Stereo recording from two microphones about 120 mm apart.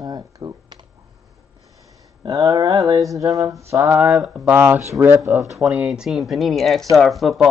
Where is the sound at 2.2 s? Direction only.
30° right (ahead or behind).